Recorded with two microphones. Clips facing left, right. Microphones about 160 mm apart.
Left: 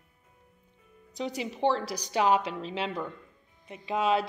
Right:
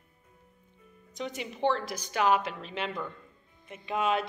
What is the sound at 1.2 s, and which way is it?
A woman's voice, 35° left (ahead or behind).